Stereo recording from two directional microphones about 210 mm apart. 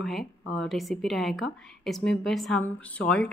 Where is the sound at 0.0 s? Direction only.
Centre (ahead or behind).